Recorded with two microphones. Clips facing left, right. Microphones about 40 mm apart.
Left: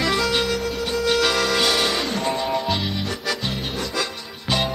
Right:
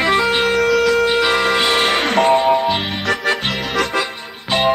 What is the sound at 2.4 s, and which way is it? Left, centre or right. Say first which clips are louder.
Music: right 9 dB; right.